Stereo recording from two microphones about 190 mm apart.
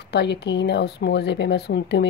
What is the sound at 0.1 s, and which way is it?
A woman's voice, 60° left (ahead or behind).